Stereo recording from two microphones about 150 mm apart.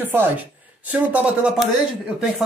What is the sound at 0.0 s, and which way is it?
Speech, 15° right (ahead or behind).